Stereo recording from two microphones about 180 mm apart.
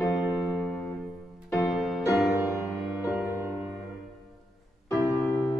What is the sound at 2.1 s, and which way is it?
Music, centre (ahead or behind).